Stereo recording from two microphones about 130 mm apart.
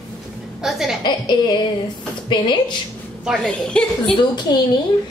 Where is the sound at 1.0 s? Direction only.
35° left (ahead or behind).